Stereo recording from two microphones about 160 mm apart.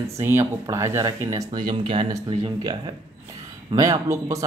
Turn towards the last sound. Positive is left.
turn(degrees=-20)  # may be behind; listen again after turning